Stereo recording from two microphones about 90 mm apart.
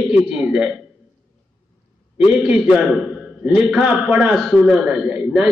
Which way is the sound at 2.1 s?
10° right (ahead or behind).